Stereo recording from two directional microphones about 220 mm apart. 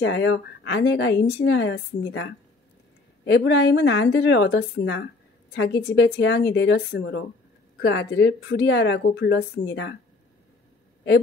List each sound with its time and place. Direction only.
0.0 s a woman's voice: 55° left (ahead or behind)